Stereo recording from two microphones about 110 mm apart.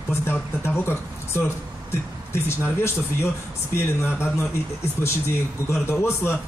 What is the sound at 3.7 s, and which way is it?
Speech, 25° left (ahead or behind).